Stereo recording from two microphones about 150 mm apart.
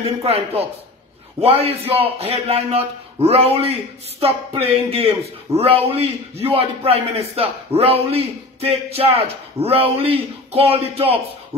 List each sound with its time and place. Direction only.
0.0 s a man's voice: 45° right (ahead or behind)
1.4 s a man's voice: 40° right (ahead or behind)